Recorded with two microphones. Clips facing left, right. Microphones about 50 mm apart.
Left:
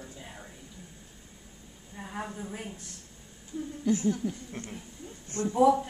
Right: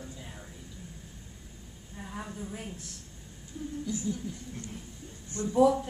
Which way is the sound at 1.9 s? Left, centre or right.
Left.